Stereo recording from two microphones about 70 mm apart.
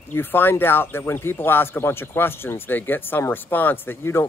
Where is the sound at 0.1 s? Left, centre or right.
Left.